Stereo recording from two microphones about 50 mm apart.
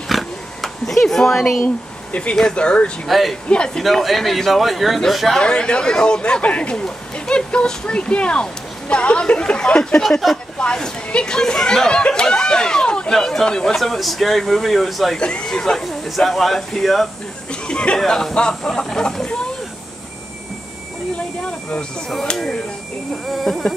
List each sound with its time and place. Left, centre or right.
0.1 s oink: centre
2.5 s speech: left
3.1 s speech: centre
3.4 s speech: centre
3.8 s speech: centre
5.4 s speech: centre
13.7 s speech: centre
15.1 s speech: centre
15.8 s speech: centre
17.5 s speech: centre
21.2 s speech: left
23.3 s speech: centre